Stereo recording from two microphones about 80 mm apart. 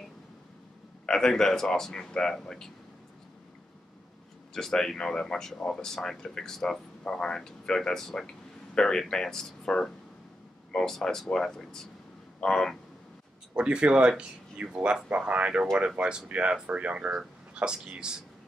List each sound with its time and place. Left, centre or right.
1.0 s speech: centre
4.6 s speech: centre
13.6 s speech: centre